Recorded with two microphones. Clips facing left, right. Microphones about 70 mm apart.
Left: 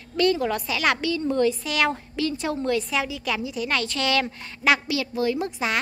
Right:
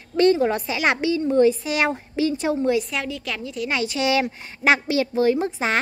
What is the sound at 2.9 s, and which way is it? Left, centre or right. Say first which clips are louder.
Speech: left 2 dB; centre.